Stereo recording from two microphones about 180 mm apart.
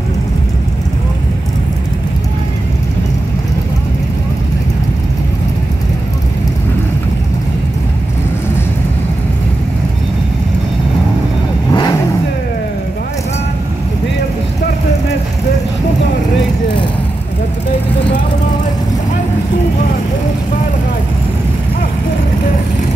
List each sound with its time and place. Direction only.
11.7 s vehicle: 20° left (ahead or behind)